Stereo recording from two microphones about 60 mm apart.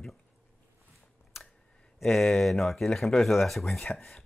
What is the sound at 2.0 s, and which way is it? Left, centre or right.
Speech, centre.